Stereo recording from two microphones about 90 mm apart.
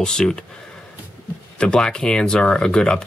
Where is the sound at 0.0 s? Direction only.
10° left (ahead or behind).